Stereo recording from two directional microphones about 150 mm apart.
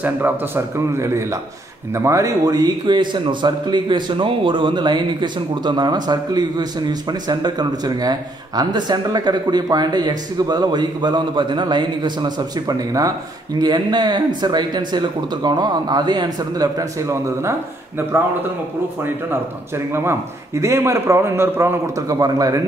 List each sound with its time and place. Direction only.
0.0 s a man's voice: 15° right (ahead or behind)
19.9 s a man's voice: 15° right (ahead or behind)